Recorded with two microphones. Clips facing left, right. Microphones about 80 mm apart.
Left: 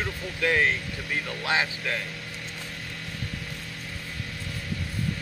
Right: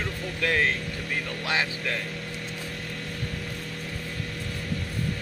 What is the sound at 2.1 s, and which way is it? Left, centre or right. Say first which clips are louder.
Vehicle: right 3 dB; right.